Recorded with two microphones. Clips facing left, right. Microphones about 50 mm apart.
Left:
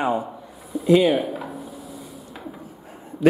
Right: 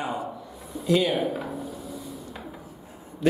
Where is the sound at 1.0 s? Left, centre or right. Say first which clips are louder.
Left 5 dB; centre.